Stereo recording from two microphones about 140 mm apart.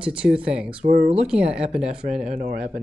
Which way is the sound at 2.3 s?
70° right (ahead or behind).